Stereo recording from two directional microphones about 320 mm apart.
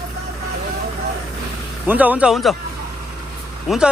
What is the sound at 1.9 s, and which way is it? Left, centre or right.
Speech, centre.